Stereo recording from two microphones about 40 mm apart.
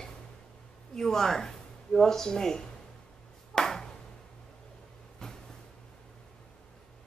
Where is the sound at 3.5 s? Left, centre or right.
Centre.